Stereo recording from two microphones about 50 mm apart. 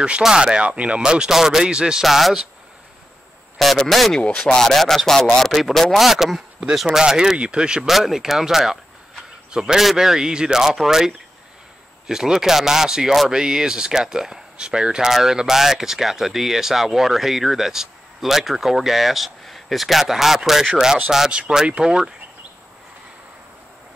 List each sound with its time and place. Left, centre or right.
0.2 s speech: centre
2.0 s speech: centre
3.5 s speech: centre
4.2 s speech: centre
7.9 s speech: centre
21.3 s speech: right